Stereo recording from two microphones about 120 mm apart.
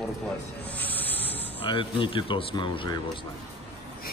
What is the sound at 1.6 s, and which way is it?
Speech, 45° left (ahead or behind).